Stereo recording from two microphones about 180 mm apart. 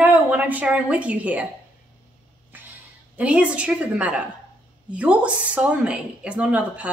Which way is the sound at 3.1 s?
10° right (ahead or behind).